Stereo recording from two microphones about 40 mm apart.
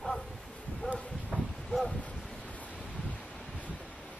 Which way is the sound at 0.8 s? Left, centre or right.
Left.